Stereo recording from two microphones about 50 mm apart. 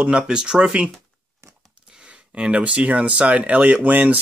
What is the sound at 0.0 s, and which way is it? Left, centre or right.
Speech, centre.